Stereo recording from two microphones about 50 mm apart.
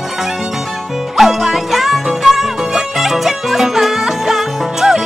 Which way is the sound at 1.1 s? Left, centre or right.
Centre.